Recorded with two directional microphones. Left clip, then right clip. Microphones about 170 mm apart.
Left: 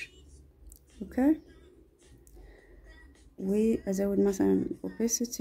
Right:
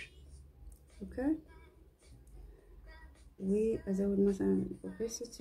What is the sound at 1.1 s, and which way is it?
Speech, 65° left (ahead or behind).